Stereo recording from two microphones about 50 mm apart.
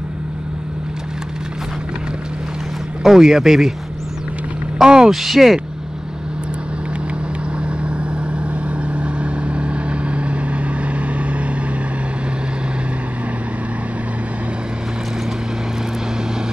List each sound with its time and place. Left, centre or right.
3.0 s speech: centre
4.7 s a sound: centre
5.1 s speech: centre
7.6 s vehicle: right